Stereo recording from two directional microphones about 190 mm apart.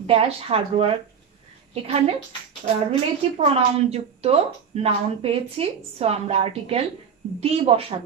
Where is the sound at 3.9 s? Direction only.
30° right (ahead or behind).